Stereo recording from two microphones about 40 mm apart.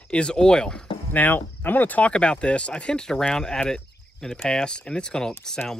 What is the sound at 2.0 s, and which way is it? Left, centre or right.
Speech, left.